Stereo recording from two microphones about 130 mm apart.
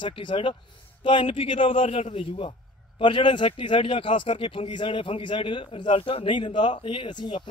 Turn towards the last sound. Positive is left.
turn(degrees=35)  # may be behind; listen again after turning